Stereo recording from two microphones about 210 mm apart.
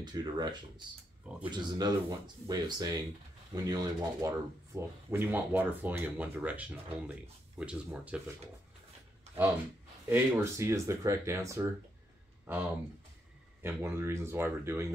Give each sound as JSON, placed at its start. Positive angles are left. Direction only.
{"t": 0.0, "sound": "speech", "side_deg": -20}
{"t": 10.0, "sound": "speech", "side_deg": -10}